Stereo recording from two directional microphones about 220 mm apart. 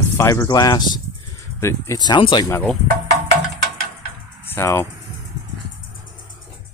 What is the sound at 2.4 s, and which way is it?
Speech, 10° left (ahead or behind).